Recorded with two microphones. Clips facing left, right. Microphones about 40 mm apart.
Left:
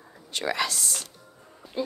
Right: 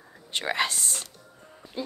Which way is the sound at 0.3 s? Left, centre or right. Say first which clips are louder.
Right 1 dB; right.